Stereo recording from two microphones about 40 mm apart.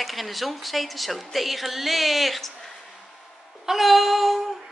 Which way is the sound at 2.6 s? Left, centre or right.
Centre.